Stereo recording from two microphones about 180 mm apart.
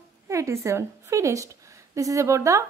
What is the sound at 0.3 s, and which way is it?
A woman's voice, 15° right (ahead or behind).